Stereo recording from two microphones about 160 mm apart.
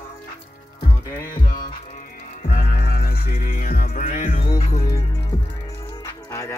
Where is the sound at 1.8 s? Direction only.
50° left (ahead or behind).